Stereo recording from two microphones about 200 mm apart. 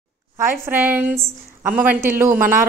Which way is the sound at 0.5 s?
10° right (ahead or behind).